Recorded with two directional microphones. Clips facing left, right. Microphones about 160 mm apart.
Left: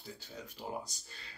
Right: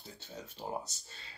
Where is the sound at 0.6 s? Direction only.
20° right (ahead or behind).